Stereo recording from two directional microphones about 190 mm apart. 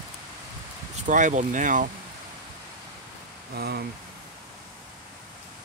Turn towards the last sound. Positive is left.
turn(degrees=-55)  # may be behind; listen again after turning